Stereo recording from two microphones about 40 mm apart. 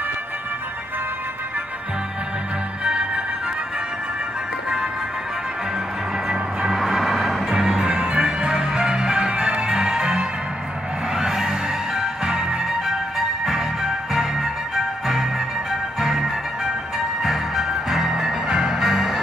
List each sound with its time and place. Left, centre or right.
2.8 s music: centre
6.2 s music: centre
6.8 s music: centre
7.4 s music: centre